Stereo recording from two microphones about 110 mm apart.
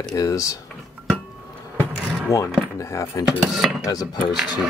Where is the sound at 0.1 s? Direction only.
30° left (ahead or behind).